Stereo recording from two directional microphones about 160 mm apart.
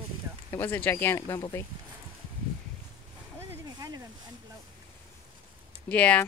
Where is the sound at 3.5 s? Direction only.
20° right (ahead or behind).